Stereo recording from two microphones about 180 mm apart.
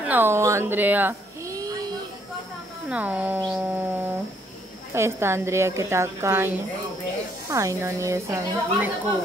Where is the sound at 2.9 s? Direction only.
10° right (ahead or behind).